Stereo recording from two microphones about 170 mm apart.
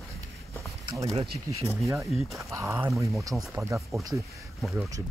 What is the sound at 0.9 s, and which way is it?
Speech, 20° right (ahead or behind).